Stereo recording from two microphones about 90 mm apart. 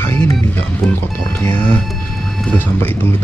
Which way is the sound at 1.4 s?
20° left (ahead or behind).